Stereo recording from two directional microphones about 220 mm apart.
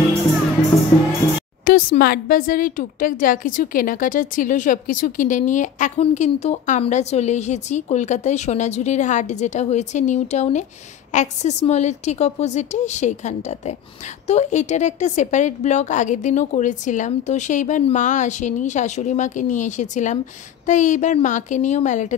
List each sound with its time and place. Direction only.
1.6 s speech: 40° left (ahead or behind)